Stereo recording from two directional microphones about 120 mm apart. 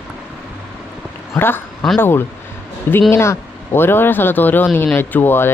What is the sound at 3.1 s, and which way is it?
Speech, 20° left (ahead or behind).